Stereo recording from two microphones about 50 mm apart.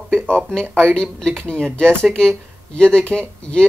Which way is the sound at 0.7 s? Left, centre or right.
Right.